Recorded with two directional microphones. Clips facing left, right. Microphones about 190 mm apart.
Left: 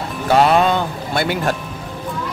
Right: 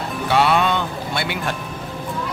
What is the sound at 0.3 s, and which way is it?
Music, 40° left (ahead or behind).